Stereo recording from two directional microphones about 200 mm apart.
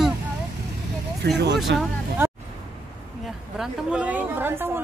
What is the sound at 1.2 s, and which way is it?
Speech, 55° right (ahead or behind).